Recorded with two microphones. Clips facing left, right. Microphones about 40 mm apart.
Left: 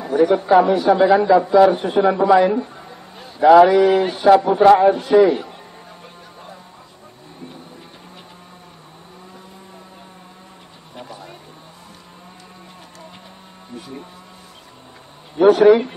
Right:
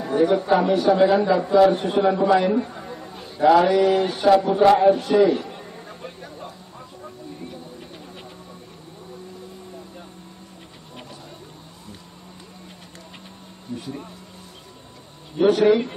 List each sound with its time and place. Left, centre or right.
0.0 s a sound: centre
0.5 s a man's voice: centre
2.8 s a sound: centre
3.6 s a man's voice: centre
4.6 s a man's voice: left
4.9 s a man's voice: centre
15.3 s speech: centre